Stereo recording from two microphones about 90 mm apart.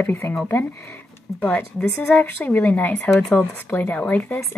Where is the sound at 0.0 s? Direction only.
25° left (ahead or behind).